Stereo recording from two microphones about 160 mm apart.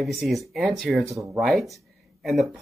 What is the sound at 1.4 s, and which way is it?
Speech, centre (ahead or behind).